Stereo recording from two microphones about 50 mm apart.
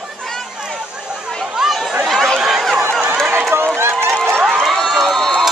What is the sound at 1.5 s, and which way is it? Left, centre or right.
Chatter, centre.